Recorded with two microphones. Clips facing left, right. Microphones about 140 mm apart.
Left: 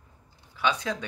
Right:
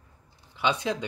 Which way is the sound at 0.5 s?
20° right (ahead or behind).